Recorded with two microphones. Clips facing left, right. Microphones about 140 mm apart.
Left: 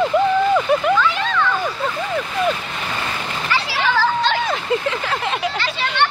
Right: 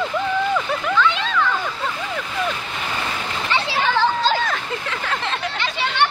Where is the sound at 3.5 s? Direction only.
25° right (ahead or behind).